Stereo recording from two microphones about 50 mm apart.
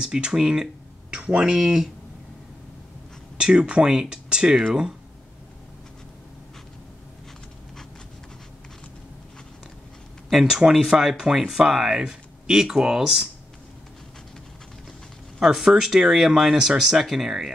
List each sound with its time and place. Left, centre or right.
0.0 s speech: centre
3.3 s speech: centre
10.4 s speech: centre
10.7 s speech: centre
15.3 s speech: centre